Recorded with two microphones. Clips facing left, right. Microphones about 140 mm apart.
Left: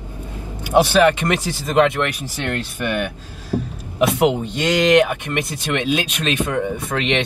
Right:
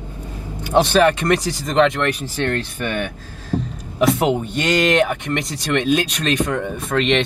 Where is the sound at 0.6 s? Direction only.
10° left (ahead or behind).